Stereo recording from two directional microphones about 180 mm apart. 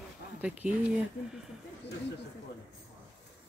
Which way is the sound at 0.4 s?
5° right (ahead or behind).